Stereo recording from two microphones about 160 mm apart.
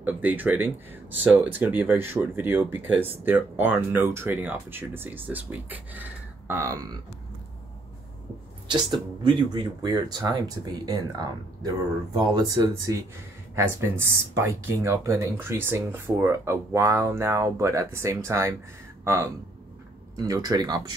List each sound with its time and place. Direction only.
0.0 s speech: 10° right (ahead or behind)
8.6 s speech: 30° right (ahead or behind)